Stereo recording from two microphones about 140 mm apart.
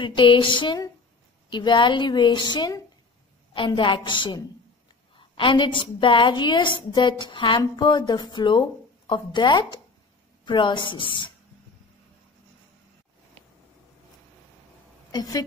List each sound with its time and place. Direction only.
0.0 s a woman's voice: 35° left (ahead or behind)
15.0 s a woman's voice: 25° left (ahead or behind)